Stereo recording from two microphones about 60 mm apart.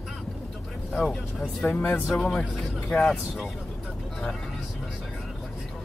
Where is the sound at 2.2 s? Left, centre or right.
Centre.